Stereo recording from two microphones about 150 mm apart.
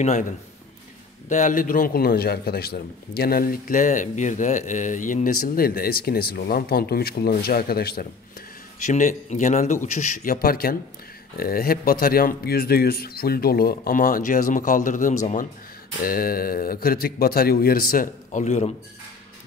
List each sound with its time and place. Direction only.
0.0 s speech: 50° left (ahead or behind)
1.3 s a man's voice: 60° left (ahead or behind); by 8.5 s 85° left
8.8 s speech: 55° left (ahead or behind)
10.3 s a man's voice: 85° left; by 15.1 s 55° left (ahead or behind)
16.0 s a man's voice: 75° left (ahead or behind); by 18.7 s 50° left (ahead or behind)